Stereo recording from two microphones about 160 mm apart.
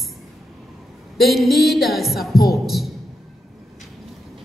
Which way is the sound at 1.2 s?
Centre (ahead or behind).